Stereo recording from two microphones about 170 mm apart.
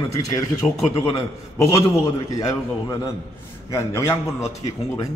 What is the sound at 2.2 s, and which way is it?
A man's voice, 20° left (ahead or behind).